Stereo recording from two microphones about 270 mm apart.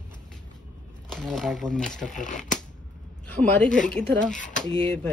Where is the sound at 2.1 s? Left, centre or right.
Left.